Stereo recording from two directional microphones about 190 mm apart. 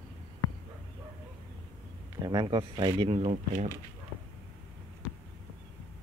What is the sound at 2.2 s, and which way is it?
Speech, 20° right (ahead or behind).